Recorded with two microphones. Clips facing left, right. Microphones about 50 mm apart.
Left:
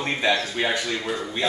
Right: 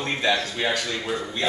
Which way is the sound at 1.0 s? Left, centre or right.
Centre.